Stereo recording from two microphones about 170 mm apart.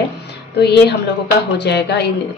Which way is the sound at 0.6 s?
80° left.